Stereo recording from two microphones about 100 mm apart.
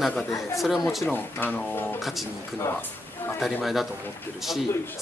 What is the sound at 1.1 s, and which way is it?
Speech, 20° left (ahead or behind).